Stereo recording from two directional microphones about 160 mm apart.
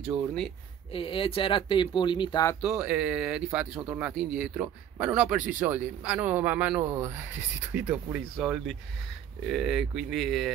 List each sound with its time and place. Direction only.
0.9 s speech: 35° left (ahead or behind)
2.6 s speech: 5° right (ahead or behind)